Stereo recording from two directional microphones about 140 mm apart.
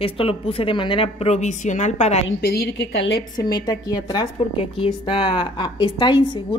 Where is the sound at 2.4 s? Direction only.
90° left.